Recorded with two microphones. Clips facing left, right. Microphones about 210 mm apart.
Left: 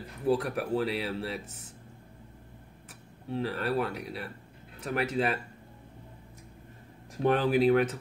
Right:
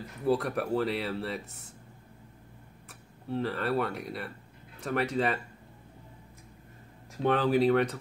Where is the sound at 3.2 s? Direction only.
5° left (ahead or behind).